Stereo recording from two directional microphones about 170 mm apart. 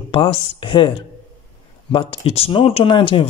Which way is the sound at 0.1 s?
30° left (ahead or behind).